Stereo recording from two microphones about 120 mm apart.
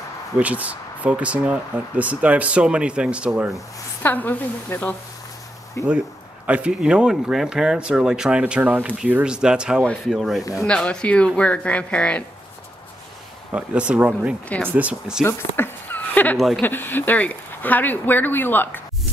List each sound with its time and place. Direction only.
0.4 s speech: 10° right (ahead or behind)
4.0 s speech: 15° left (ahead or behind)
6.4 s speech: 10° right (ahead or behind); by 12.3 s 10° left (ahead or behind)
13.5 s speech: 10° right (ahead or behind)
15.2 s a sound: 20° left (ahead or behind)
16.3 s speech: centre (ahead or behind)
16.6 s speech: 15° left (ahead or behind)